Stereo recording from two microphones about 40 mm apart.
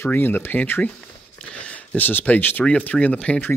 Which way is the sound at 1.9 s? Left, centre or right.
Left.